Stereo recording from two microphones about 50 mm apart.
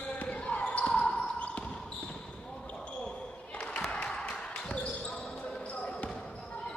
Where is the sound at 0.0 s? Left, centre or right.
Left.